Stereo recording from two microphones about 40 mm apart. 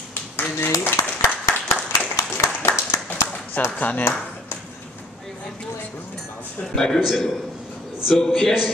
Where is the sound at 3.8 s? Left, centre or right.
Left.